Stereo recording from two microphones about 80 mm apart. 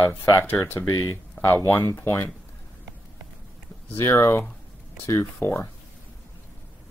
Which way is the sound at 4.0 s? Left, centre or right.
Left.